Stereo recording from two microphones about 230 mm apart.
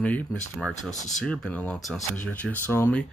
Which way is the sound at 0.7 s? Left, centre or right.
Left.